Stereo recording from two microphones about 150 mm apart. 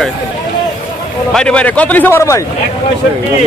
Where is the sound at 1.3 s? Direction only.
5° left (ahead or behind).